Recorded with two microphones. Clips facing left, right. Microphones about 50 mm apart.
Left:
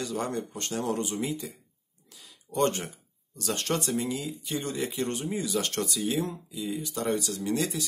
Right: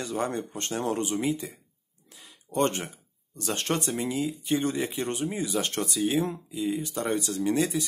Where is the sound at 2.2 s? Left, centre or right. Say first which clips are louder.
Even; right.